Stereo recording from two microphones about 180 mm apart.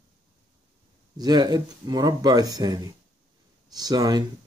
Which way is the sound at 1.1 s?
20° right (ahead or behind).